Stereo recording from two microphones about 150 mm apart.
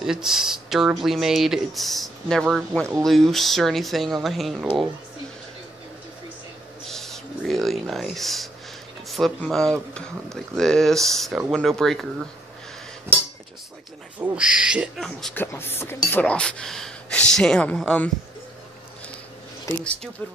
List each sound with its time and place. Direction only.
0.0 s speech: 5° right (ahead or behind)
6.9 s speech: centre (ahead or behind)
13.1 s cutlery: 15° right (ahead or behind)
14.2 s speech: 5° right (ahead or behind)
15.3 s speech: 15° left (ahead or behind)